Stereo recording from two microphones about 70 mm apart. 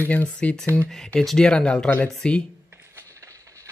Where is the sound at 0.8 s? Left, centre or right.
Centre.